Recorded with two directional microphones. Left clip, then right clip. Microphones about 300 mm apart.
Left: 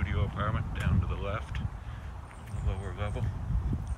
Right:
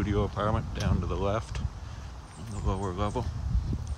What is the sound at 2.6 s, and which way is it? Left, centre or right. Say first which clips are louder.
Speech: right 8 dB; centre.